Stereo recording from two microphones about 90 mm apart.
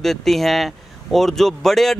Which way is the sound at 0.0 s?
5° left (ahead or behind).